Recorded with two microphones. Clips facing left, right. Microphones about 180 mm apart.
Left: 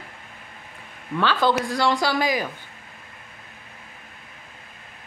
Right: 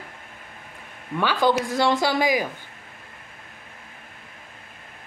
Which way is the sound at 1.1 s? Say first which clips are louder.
Even; 15° right (ahead or behind).